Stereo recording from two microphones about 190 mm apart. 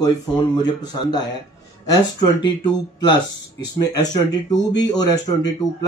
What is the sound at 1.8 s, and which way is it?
Speech, 20° left (ahead or behind).